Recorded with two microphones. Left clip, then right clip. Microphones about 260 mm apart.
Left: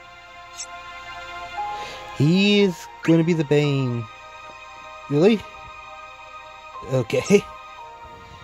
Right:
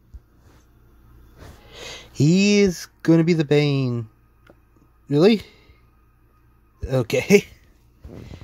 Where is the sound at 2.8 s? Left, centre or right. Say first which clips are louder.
Right 1 dB; centre.